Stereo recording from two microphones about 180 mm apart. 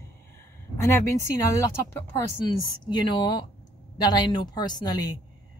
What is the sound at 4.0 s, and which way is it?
Speech, 25° left (ahead or behind).